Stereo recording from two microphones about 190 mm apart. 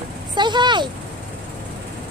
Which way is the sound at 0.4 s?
25° right (ahead or behind).